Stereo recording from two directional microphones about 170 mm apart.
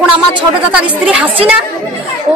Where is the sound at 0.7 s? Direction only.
5° right (ahead or behind).